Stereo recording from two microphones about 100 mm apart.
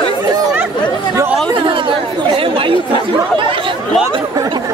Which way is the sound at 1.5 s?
55° right (ahead or behind).